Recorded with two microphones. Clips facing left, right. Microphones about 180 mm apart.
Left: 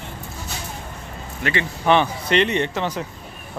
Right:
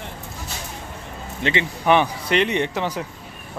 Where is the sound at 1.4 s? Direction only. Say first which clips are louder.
Right 2 dB; 25° right (ahead or behind).